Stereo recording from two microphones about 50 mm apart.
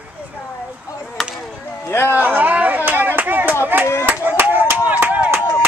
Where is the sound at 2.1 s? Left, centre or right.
Right.